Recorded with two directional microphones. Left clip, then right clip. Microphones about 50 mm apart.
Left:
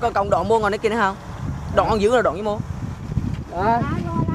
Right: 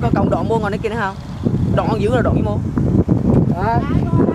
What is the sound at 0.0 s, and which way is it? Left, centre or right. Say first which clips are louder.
Speech: right 1 dB; left.